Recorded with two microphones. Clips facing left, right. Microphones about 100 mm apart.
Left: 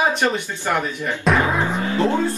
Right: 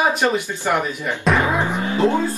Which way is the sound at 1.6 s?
15° right (ahead or behind).